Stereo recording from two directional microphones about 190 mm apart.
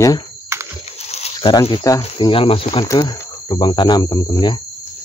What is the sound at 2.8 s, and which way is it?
Speech, 20° left (ahead or behind).